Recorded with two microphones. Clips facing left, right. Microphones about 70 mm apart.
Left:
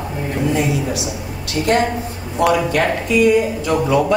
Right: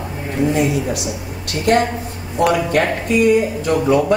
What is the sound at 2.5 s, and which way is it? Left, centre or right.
Speech, right.